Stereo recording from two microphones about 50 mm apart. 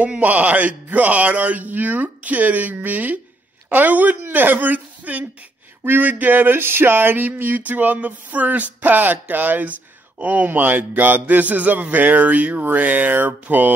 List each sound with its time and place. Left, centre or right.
0.2 s speech: right